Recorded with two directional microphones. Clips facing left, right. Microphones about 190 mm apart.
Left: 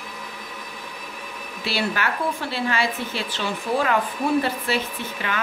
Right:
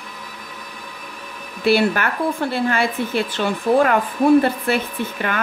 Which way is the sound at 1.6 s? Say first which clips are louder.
Right 8 dB; 55° right (ahead or behind).